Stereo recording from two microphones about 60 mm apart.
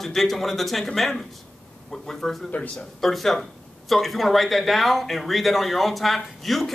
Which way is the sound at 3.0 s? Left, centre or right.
Centre.